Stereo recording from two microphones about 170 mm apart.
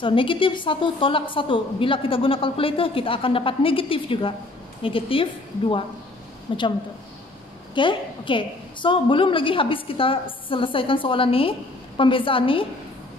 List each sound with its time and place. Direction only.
0.0 s a woman's voice: 30° left (ahead or behind)
7.7 s a woman's voice: 30° left (ahead or behind)